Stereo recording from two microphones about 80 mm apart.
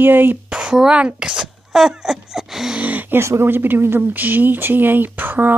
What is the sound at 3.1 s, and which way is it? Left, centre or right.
Speech, right.